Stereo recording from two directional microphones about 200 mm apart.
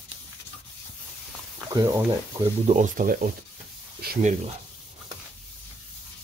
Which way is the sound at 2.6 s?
40° right (ahead or behind).